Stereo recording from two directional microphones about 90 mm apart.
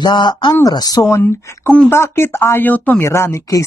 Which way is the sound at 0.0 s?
55° left (ahead or behind).